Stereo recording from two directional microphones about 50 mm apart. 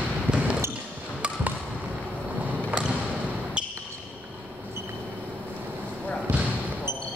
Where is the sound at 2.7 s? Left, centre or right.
Centre.